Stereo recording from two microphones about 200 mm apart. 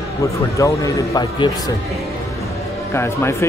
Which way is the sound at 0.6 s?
15° left (ahead or behind).